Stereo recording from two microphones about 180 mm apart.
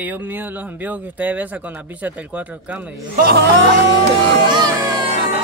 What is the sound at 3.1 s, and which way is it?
Speech, 60° right (ahead or behind).